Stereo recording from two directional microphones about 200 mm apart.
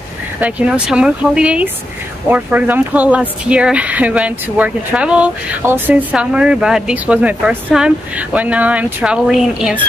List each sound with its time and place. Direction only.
0.4 s speech: 5° right (ahead or behind)